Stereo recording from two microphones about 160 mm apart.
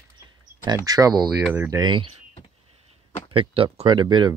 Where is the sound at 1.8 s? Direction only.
30° right (ahead or behind).